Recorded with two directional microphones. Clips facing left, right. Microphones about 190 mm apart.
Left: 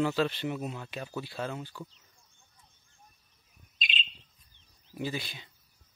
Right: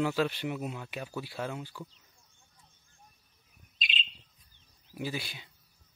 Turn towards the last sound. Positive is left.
turn(degrees=-10)  # may be behind; listen again after turning